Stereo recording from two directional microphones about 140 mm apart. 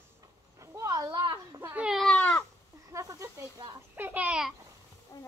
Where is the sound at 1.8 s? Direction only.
5° right (ahead or behind).